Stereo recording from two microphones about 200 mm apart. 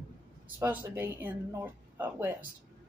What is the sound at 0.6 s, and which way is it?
Speech, 10° right (ahead or behind).